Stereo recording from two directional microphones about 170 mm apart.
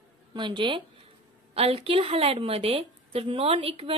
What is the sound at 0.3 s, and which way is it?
A woman's voice, 30° right (ahead or behind).